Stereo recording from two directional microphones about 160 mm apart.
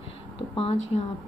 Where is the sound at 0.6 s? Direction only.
40° left (ahead or behind).